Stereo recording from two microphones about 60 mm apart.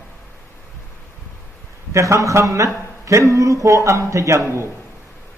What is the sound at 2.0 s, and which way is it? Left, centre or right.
A man's voice, right.